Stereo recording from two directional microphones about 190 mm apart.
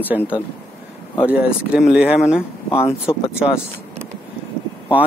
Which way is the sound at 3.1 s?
25° left (ahead or behind).